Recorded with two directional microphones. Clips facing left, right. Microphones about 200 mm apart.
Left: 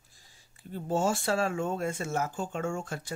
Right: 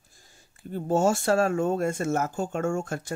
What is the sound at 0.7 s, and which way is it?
Speech, 45° right (ahead or behind).